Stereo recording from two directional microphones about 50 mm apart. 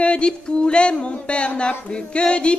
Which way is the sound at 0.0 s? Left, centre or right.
Left.